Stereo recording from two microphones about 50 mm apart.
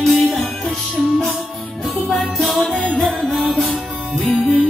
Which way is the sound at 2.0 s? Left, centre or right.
Centre.